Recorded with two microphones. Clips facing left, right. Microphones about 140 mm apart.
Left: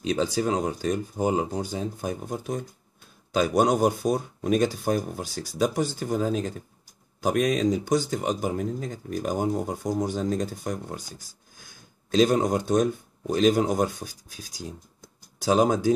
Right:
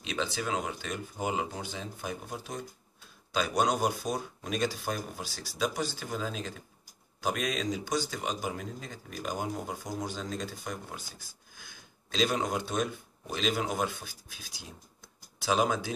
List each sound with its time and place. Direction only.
0.0 s speech: 40° left (ahead or behind)